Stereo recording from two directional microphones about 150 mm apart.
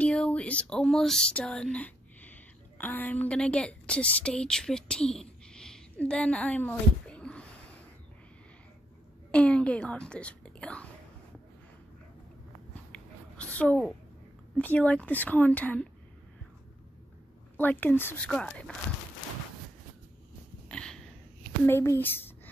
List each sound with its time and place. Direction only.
0.0 s speech: 10° left (ahead or behind)
9.3 s speech: 5° left (ahead or behind)
12.9 s a sound: 10° left (ahead or behind)
14.6 s a woman's voice: 10° left (ahead or behind)
17.6 s a woman's voice: 10° left (ahead or behind)
20.6 s a sound: 5° left (ahead or behind)
21.6 s a woman's voice: 15° left (ahead or behind)